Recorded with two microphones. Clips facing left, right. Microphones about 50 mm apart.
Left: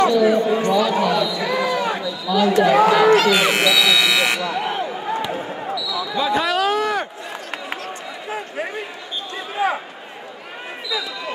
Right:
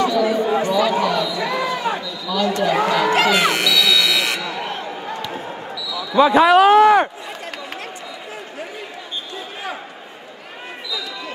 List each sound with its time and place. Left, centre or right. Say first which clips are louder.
0.0 s speech: left 2 dB; centre
0.7 s a sound: even; centre
2.3 s speech: left 4 dB; centre
3.5 s buzzer: left 1 dB; centre
5.8 s basketball bounce: left 1 dB; centre
6.1 s speech: right 9 dB; right
6.7 s a sound: right 9 dB; right
10.9 s basketball bounce: left 3 dB; centre